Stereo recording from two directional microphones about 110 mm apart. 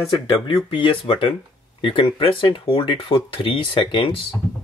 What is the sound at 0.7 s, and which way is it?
Speech, 50° left (ahead or behind).